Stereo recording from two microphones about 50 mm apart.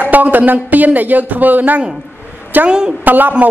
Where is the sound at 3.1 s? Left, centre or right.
Right.